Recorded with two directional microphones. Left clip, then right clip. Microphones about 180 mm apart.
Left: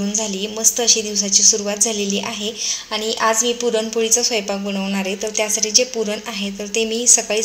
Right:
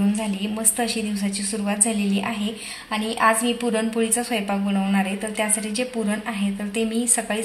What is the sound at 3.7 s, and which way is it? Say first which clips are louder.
A woman's voice: left 5 dB; 50° left (ahead or behind).